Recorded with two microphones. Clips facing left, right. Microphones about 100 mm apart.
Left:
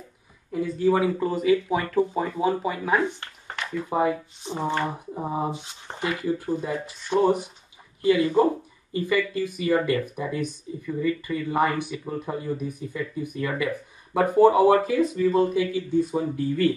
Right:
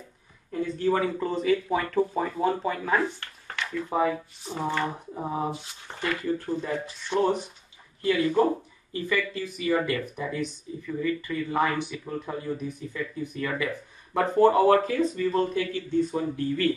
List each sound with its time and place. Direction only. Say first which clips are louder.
0.5 s speech: left 3 dB; 10° left (ahead or behind)
3.0 s speech: left 2 dB; 20° left (ahead or behind)
5.5 s speech: left 2 dB; 20° left (ahead or behind)
6.2 s speech: left 2 dB; 10° left (ahead or behind)